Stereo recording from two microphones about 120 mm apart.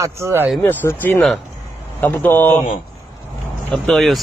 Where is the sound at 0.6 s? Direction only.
20° left (ahead or behind).